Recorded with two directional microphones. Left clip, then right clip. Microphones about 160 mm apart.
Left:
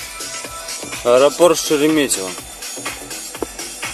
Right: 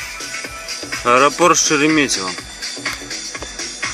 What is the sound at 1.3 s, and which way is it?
Speech, 50° right (ahead or behind).